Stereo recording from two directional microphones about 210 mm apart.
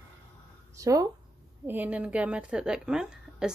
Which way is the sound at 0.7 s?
15° right (ahead or behind).